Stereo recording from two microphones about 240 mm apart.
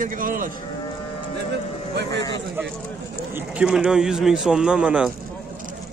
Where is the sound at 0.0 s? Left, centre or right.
Right.